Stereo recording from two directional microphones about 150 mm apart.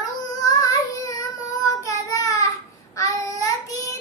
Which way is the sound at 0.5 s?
25° left (ahead or behind).